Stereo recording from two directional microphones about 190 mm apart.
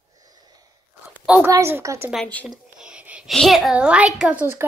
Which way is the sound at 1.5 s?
15° right (ahead or behind).